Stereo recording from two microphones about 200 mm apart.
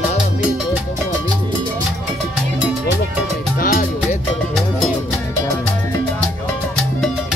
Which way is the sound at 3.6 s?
40° left (ahead or behind).